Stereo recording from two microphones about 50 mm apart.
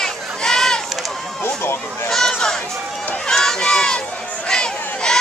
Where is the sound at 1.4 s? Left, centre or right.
Left.